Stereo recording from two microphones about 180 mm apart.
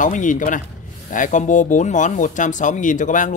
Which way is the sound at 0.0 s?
45° left (ahead or behind).